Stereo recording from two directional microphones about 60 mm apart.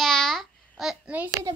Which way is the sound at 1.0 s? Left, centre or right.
Right.